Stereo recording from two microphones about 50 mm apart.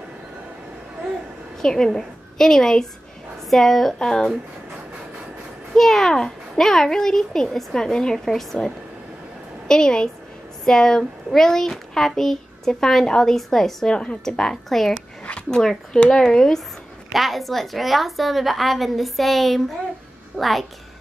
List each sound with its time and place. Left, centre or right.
1.6 s a woman's voice: centre
5.8 s a child's voice: centre
9.7 s a child's voice: centre
15.2 s a sound: left
15.6 s a child's voice: centre
17.1 s a woman's voice: centre